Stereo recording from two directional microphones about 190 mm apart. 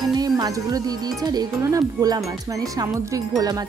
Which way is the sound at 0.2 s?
20° right (ahead or behind).